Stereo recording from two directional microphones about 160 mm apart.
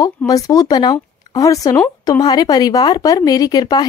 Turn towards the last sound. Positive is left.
turn(degrees=25)  # may be behind; listen again after turning